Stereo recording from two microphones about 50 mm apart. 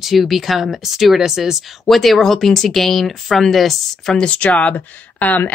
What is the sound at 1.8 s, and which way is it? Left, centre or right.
A woman's voice, centre.